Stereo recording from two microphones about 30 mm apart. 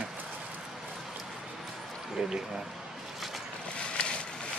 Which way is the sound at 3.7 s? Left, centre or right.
Left.